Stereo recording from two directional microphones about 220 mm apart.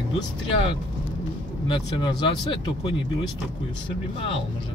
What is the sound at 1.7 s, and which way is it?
Speech, 20° left (ahead or behind).